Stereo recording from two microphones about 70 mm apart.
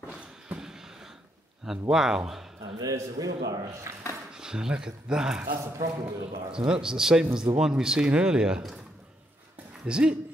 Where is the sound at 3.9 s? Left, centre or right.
Right.